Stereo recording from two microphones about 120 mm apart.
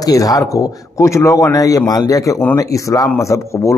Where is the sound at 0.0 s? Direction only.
30° left (ahead or behind).